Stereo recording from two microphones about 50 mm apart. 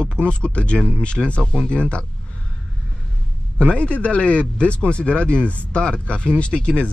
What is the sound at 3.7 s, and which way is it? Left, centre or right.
Speech, left.